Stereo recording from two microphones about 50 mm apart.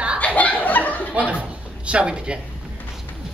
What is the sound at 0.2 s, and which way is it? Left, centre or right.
Chuckle, left.